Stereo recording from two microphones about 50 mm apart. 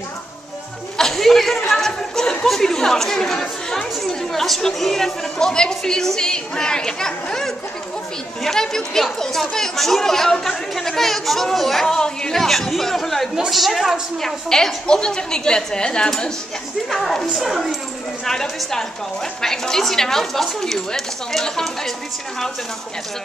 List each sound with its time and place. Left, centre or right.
0.9 s a sound: centre
1.7 s chatter: centre
2.4 s speech: centre
14.2 s speech: centre
17.0 s speech: centre
18.2 s speech: centre